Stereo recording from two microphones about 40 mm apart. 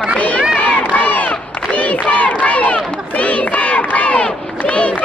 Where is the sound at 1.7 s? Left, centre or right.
Left.